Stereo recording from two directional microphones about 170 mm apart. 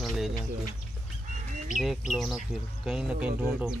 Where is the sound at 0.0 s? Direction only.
Centre (ahead or behind).